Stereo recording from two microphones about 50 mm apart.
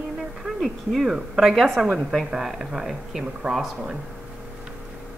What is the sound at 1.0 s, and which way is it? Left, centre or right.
Speech, centre.